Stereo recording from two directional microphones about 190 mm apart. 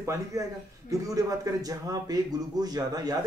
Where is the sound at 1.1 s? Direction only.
20° right (ahead or behind).